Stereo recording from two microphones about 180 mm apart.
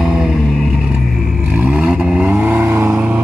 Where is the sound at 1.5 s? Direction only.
10° right (ahead or behind).